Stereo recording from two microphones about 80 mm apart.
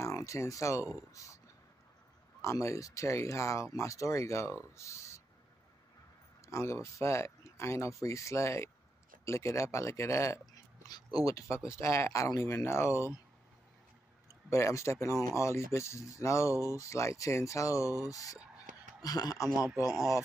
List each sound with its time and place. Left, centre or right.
0.0 s speech: left
2.4 s speech: left
6.4 s speech: left
10.9 s speech: left
14.5 s speech: left